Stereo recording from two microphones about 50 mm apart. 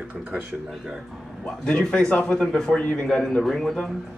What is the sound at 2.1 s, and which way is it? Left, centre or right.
Speech, left.